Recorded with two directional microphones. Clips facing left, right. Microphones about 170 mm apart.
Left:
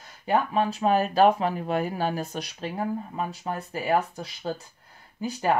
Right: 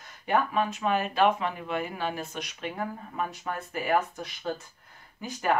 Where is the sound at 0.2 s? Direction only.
30° left (ahead or behind).